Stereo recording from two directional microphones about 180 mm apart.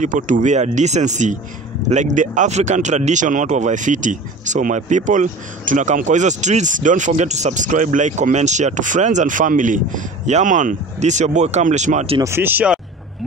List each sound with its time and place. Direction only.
0.0 s speech: 45° right (ahead or behind)
12.2 s speech: 15° right (ahead or behind)